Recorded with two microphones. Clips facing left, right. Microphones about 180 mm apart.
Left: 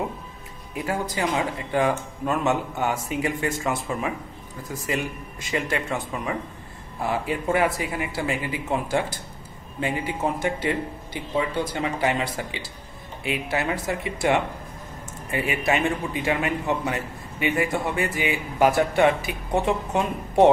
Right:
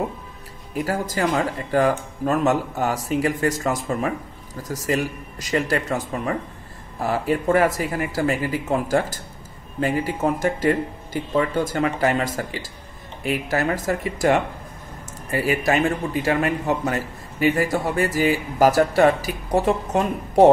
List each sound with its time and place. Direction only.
1.1 s speech: 50° right (ahead or behind)